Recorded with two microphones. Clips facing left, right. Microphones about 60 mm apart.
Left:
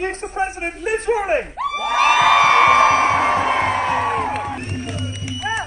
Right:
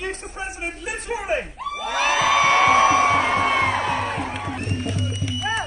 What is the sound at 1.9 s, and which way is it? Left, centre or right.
Music, left.